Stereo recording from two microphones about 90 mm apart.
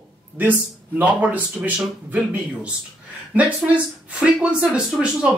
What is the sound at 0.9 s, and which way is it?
Speech, 15° right (ahead or behind).